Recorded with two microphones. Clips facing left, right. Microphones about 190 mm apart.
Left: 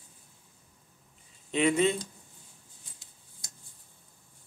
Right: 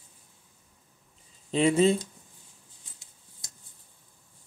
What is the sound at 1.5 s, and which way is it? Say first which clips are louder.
Speech: right 3 dB; 30° right (ahead or behind).